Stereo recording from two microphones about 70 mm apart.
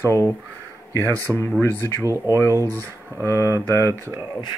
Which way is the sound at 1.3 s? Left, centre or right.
Right.